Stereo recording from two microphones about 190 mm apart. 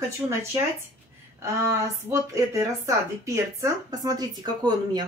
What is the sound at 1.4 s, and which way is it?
A woman's voice, 15° right (ahead or behind).